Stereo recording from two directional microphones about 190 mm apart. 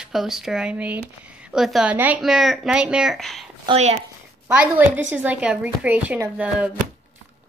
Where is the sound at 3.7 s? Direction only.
35° right (ahead or behind).